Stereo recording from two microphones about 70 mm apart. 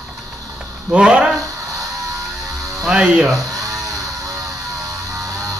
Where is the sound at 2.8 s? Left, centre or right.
Centre.